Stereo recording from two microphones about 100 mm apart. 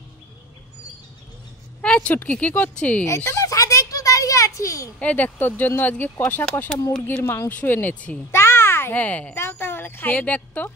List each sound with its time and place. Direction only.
1.8 s speech: 10° left (ahead or behind)
3.3 s a sound: 30° left (ahead or behind)
4.9 s speech: 15° left (ahead or behind)
8.3 s a child's voice: 25° left (ahead or behind)